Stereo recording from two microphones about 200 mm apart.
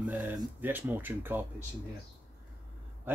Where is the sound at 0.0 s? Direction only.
10° right (ahead or behind).